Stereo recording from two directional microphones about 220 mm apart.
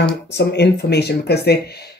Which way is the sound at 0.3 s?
50° left (ahead or behind).